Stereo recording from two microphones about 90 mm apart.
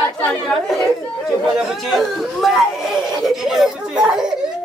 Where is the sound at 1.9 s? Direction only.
Centre (ahead or behind).